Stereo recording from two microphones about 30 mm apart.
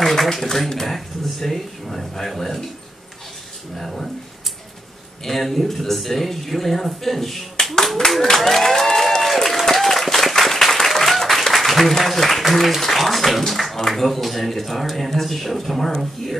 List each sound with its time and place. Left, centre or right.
0.0 s a sound: centre
0.7 s speech: centre
3.7 s speech: centre
5.2 s speech: centre
8.0 s speech: centre
8.4 s applause: centre
12.0 s speech: centre
13.5 s a sound: centre
13.8 s speech: centre